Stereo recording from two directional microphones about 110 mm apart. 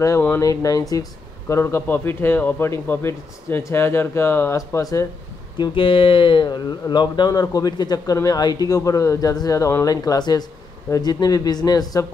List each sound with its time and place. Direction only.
0.4 s a man's voice: 30° left (ahead or behind)
5.6 s speech: 50° left (ahead or behind); by 9.8 s 25° left (ahead or behind)
9.8 s speech: 35° left (ahead or behind)